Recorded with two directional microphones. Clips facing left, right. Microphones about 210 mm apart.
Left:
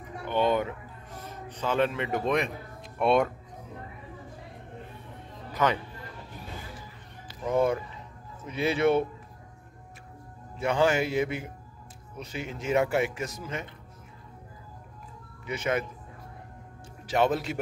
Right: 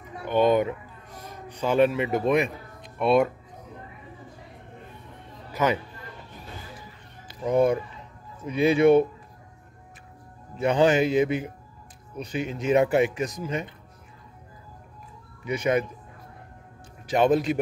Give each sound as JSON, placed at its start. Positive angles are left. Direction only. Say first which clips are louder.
{"t": 0.2, "sound": "a sound", "louder": "right 5 dB", "side_deg": -15}
{"t": 1.2, "sound": "speech", "louder": "right 4 dB", "side_deg": -10}
{"t": 5.5, "sound": "music", "louder": "right 2 dB", "side_deg": -10}
{"t": 7.2, "sound": "speech", "louder": "right 4 dB", "side_deg": -15}
{"t": 10.6, "sound": "speech", "louder": "right 4 dB", "side_deg": -20}
{"t": 15.4, "sound": "speech", "louder": "right 5 dB", "side_deg": -15}
{"t": 17.1, "sound": "speech", "louder": "right 5 dB", "side_deg": -15}